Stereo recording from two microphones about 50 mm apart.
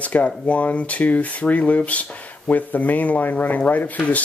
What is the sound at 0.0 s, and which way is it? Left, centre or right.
Speech, left.